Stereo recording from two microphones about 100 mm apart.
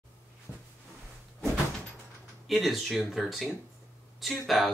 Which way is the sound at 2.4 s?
Centre (ahead or behind).